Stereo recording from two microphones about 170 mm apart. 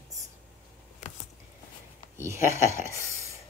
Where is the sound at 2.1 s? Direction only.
15° right (ahead or behind).